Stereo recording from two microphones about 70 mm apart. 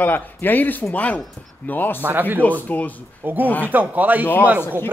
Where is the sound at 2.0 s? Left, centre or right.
Right.